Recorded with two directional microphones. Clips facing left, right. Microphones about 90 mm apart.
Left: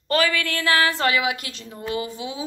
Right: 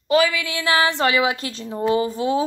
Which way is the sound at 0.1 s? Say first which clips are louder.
Right 3 dB; 10° right (ahead or behind).